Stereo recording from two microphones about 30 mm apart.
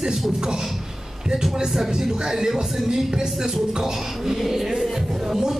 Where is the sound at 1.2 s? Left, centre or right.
Right.